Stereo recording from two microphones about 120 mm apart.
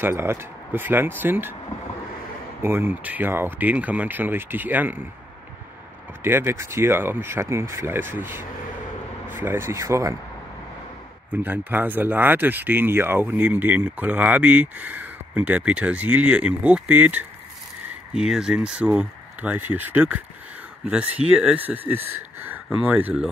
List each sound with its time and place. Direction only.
0.0 s speech: 20° right (ahead or behind)
2.6 s speech: 20° right (ahead or behind)
6.2 s speech: 20° right (ahead or behind)
11.3 s speech: 15° right (ahead or behind)